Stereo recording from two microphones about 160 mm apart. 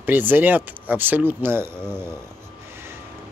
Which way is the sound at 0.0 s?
10° right (ahead or behind).